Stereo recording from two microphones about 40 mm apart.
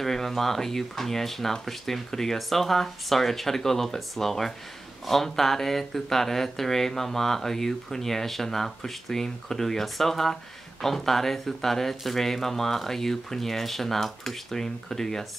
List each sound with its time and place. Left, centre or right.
0.0 s speech: centre